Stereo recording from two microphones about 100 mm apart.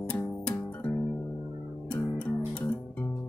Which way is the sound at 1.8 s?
10° left (ahead or behind).